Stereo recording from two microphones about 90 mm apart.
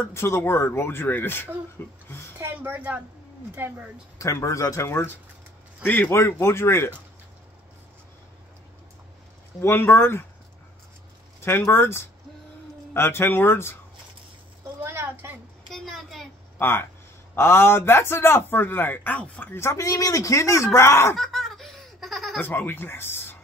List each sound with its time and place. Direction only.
0.1 s a man's voice: 30° left (ahead or behind)
2.0 s a sound: 25° left (ahead or behind)
2.3 s speech: 25° right (ahead or behind)
4.2 s a man's voice: 35° left (ahead or behind)
9.6 s a man's voice: 25° left (ahead or behind)
11.4 s a man's voice: 25° left (ahead or behind)
14.8 s a sound: 25° right (ahead or behind)
15.7 s a sound: 5° left (ahead or behind)
16.5 s a man's voice: 25° left (ahead or behind)
19.5 s speech: 30° left (ahead or behind)
21.2 s baby laughter: 5° left (ahead or behind)
22.4 s speech: 20° left (ahead or behind)